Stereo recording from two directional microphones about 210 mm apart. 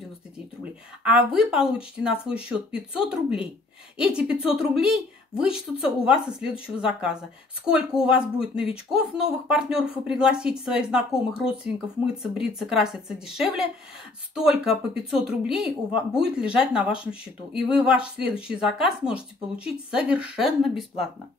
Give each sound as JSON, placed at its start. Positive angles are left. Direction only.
{"t": 1.0, "sound": "speech", "side_deg": -5}
{"t": 4.7, "sound": "speech", "side_deg": 0}
{"t": 7.6, "sound": "speech", "side_deg": -5}